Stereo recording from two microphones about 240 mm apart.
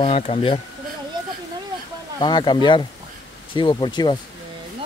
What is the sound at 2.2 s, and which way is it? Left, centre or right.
Speech, centre.